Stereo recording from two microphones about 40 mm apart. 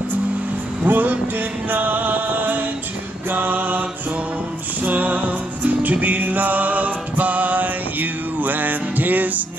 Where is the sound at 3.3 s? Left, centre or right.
Right.